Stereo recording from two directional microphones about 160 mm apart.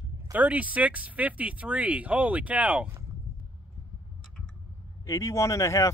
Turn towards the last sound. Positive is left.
turn(degrees=20)  # may be behind; listen again after turning